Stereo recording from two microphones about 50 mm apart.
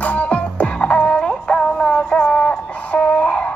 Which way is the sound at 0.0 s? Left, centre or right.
Left.